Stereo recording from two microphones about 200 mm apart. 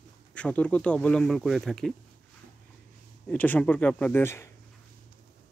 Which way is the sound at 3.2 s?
10° left (ahead or behind).